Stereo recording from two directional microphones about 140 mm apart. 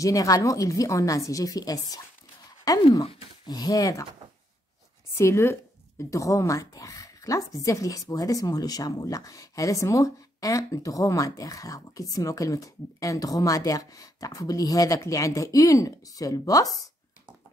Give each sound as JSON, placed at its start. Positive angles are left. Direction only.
{"t": 0.0, "sound": "speech", "side_deg": 25}
{"t": 5.1, "sound": "speech", "side_deg": 20}